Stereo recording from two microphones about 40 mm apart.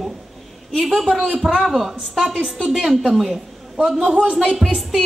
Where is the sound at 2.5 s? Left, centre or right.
Centre.